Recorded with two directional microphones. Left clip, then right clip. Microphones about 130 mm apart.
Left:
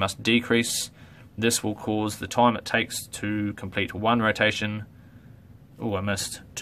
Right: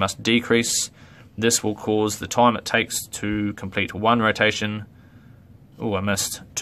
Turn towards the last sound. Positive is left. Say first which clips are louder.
# right 4 dB
turn(degrees=-35)  # may be behind; listen again after turning